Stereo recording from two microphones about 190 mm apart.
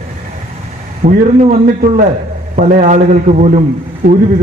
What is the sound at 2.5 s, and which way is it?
A man's voice, 45° right (ahead or behind).